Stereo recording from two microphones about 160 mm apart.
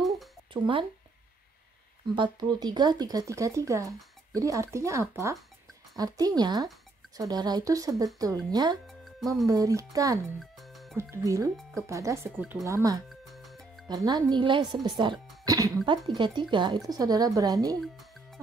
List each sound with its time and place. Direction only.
0.5 s speech: 30° right (ahead or behind)
2.1 s speech: 30° right (ahead or behind)
8.8 s music: centre (ahead or behind)
9.5 s speech: 20° right (ahead or behind)
10.4 s music: centre (ahead or behind)
11.0 s speech: 15° right (ahead or behind)
13.2 s music: centre (ahead or behind)
13.8 s speech: 25° right (ahead or behind)
17.7 s music: centre (ahead or behind)